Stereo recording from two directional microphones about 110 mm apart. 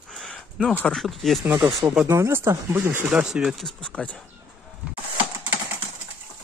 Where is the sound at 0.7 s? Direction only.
15° left (ahead or behind).